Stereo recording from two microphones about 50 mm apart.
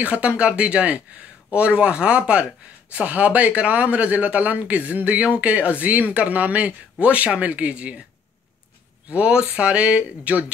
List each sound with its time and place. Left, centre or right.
0.0 s speech: right
9.1 s speech: right